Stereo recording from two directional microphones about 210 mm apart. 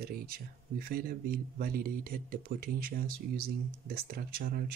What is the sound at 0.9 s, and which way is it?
Speech, 45° right (ahead or behind).